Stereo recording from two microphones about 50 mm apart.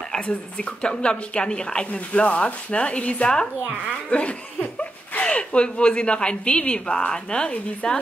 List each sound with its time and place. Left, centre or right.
0.3 s speech: centre